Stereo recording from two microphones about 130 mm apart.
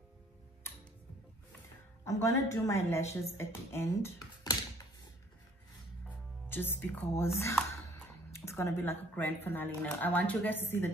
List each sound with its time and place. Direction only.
2.0 s a woman's voice: 25° left (ahead or behind)
6.5 s speech: 15° left (ahead or behind)
8.5 s speech: 20° left (ahead or behind)